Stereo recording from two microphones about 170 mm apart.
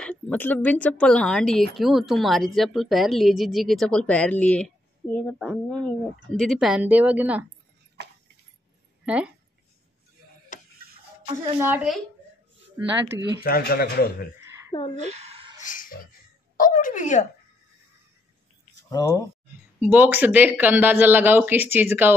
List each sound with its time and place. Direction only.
0.0 s a woman's voice: 10° left (ahead or behind); by 7.4 s 10° right (ahead or behind)
9.0 s speech: 5° right (ahead or behind)
11.6 s speech: 10° right (ahead or behind)
13.4 s speech: 65° left (ahead or behind)
14.7 s a woman's voice: 30° left (ahead or behind)
15.0 s a sound: 40° right (ahead or behind)
15.5 s dog: 50° left (ahead or behind)
16.5 s speech: 50° left (ahead or behind)
18.9 s speech: 20° left (ahead or behind)
19.8 s speech: 10° right (ahead or behind)